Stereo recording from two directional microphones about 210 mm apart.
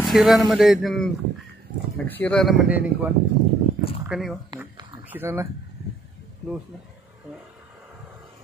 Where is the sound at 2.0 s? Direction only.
10° left (ahead or behind).